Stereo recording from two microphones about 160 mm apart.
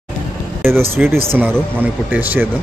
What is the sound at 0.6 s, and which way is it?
A man's voice, 15° right (ahead or behind).